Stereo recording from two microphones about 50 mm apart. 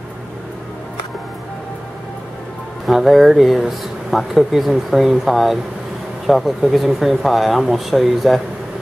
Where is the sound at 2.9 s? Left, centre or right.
Centre.